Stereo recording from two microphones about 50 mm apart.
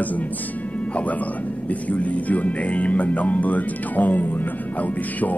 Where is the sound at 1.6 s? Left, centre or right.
Left.